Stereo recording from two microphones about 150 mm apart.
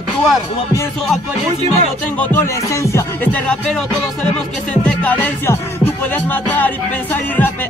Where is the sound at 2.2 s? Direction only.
15° left (ahead or behind).